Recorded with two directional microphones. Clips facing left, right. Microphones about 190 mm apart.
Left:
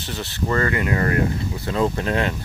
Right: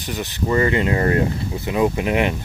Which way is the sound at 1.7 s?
15° right (ahead or behind).